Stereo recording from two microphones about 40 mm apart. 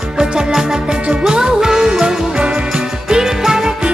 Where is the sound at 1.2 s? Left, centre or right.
Centre.